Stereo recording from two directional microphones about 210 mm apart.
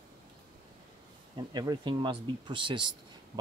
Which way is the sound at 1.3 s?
20° right (ahead or behind).